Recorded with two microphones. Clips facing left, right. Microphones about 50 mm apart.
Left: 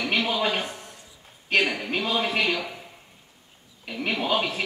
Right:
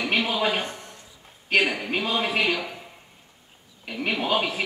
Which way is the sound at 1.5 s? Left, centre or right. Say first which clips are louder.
Right 1 dB; centre.